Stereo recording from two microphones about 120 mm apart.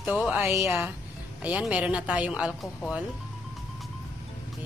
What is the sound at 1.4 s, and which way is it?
A woman's voice, 10° right (ahead or behind).